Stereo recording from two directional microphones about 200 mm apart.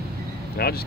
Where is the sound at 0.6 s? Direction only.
50° left (ahead or behind).